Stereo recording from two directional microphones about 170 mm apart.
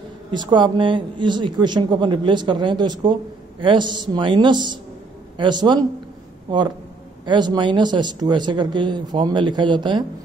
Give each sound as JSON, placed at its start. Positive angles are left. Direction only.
{"t": 0.3, "sound": "speech", "side_deg": -25}
{"t": 7.2, "sound": "speech", "side_deg": -25}